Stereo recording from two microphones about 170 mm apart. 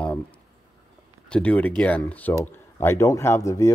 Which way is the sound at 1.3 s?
10° left (ahead or behind).